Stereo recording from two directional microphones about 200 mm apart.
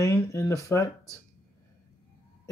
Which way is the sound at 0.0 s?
15° left (ahead or behind).